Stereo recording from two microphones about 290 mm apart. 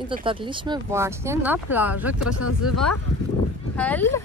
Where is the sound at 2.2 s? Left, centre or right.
Left.